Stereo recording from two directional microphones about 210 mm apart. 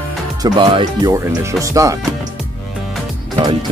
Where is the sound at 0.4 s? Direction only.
20° right (ahead or behind).